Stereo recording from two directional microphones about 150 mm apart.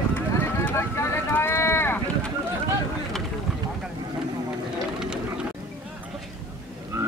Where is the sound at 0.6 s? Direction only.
15° left (ahead or behind).